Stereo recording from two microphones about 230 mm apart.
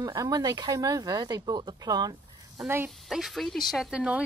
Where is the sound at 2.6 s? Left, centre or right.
Centre.